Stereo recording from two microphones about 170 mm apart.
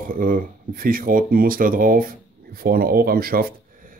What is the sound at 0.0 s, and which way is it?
Speech, 55° right (ahead or behind).